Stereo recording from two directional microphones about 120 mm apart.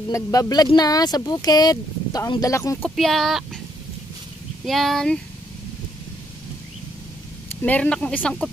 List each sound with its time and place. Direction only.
0.1 s speech: 30° left (ahead or behind)
2.8 s speech: centre (ahead or behind)
4.6 s speech: centre (ahead or behind)
7.6 s speech: 10° left (ahead or behind)